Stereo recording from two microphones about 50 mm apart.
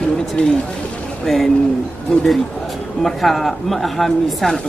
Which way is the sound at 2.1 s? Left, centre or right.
Centre.